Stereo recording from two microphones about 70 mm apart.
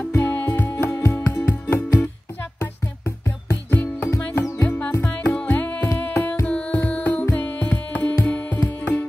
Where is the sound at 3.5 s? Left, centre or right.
Left.